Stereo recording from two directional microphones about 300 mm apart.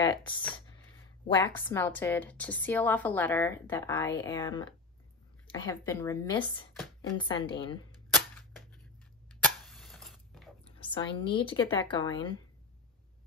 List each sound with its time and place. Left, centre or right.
1.2 s a woman's voice: centre
8.1 s cap gun: centre
9.3 s a sound: centre
10.8 s a woman's voice: centre